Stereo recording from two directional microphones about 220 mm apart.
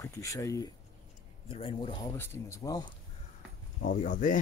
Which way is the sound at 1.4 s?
25° left (ahead or behind).